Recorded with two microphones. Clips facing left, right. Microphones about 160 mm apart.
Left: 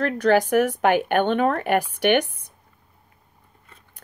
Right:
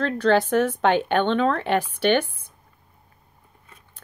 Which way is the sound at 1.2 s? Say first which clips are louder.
Left 1 dB; 50° left (ahead or behind).